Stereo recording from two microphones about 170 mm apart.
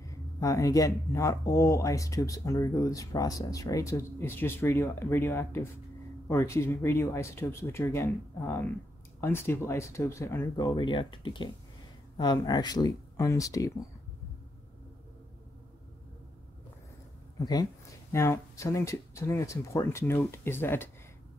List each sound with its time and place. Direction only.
0.0 s speech: 20° left (ahead or behind)
17.4 s speech: 20° left (ahead or behind)